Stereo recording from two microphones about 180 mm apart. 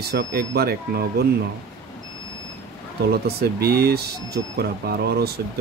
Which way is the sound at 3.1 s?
60° right (ahead or behind).